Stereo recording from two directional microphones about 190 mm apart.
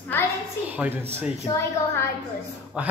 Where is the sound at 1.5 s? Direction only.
15° left (ahead or behind).